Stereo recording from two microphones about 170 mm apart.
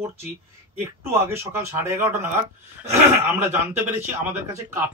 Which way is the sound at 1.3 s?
15° right (ahead or behind).